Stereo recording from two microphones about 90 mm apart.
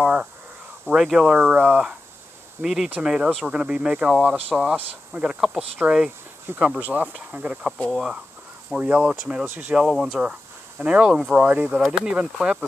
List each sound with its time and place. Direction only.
0.0 s a sound: 10° right (ahead or behind)
0.8 s speech: 5° right (ahead or behind)
1.3 s speech: 15° right (ahead or behind)
2.6 s speech: 5° right (ahead or behind)
6.4 s speech: 25° right (ahead or behind); by 11.4 s 5° right (ahead or behind)
11.4 s speech: 20° right (ahead or behind)
11.8 s speech: 10° right (ahead or behind)